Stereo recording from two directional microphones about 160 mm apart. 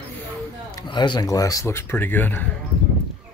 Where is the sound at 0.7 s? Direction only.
30° left (ahead or behind); by 2.4 s 10° left (ahead or behind).